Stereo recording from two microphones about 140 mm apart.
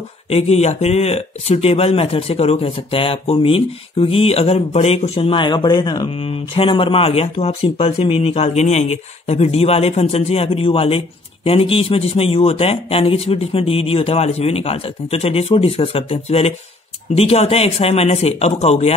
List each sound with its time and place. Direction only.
0.3 s speech: 50° left (ahead or behind); by 6.1 s 30° left (ahead or behind)
6.1 s speech: 40° left (ahead or behind)